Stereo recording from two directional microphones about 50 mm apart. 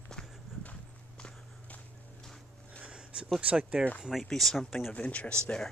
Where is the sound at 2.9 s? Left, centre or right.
Centre.